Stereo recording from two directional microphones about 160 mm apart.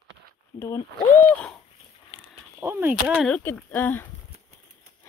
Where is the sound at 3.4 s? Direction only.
10° left (ahead or behind).